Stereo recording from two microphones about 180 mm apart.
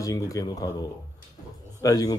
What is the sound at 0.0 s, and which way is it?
Speech, 20° left (ahead or behind).